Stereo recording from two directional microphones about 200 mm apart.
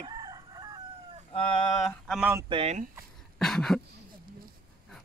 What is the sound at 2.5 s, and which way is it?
Speech, 30° right (ahead or behind).